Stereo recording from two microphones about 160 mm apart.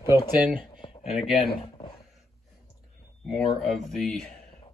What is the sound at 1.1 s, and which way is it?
Speech, centre (ahead or behind).